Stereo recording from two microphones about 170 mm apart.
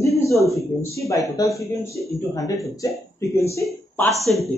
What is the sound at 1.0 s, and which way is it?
A woman's voice, 20° left (ahead or behind).